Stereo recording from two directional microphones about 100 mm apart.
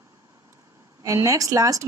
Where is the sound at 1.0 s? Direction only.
30° right (ahead or behind).